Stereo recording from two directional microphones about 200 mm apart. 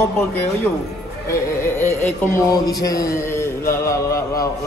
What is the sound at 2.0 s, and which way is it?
A man's voice, 15° left (ahead or behind).